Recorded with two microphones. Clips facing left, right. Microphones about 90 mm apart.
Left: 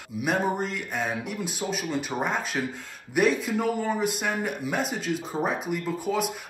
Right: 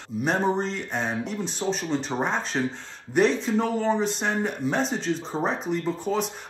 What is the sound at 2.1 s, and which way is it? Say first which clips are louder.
Speech: right 2 dB; 15° right (ahead or behind).